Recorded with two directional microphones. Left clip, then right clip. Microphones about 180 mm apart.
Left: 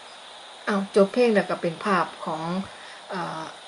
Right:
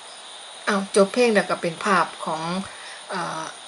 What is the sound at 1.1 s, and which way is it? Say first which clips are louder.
Speech: right 2 dB; 5° left (ahead or behind).